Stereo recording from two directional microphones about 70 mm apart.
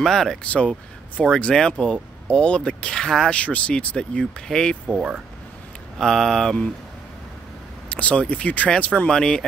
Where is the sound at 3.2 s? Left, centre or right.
Centre.